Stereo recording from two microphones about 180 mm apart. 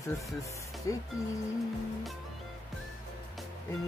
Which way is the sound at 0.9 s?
20° left (ahead or behind).